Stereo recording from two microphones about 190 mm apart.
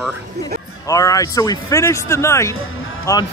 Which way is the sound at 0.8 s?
15° left (ahead or behind).